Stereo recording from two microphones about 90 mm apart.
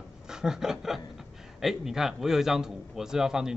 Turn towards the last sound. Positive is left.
turn(degrees=-5)  # may be behind; listen again after turning